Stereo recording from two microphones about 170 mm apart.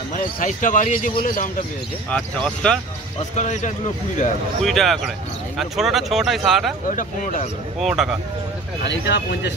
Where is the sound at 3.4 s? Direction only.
45° left (ahead or behind).